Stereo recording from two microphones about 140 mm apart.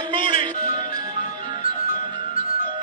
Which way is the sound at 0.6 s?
65° left (ahead or behind).